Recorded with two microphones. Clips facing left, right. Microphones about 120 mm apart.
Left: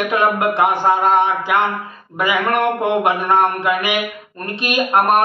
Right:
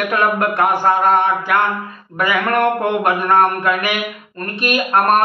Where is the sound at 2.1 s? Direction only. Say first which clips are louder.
Right 1 dB; 15° left (ahead or behind).